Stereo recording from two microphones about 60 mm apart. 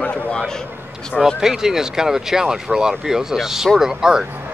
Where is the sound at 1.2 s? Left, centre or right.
Centre.